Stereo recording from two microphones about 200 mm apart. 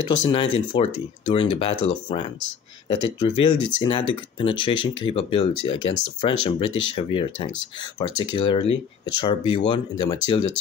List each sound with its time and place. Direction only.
0.2 s speech: 25° left (ahead or behind)
3.5 s speech: 25° right (ahead or behind)
3.8 s speech: 25° left (ahead or behind)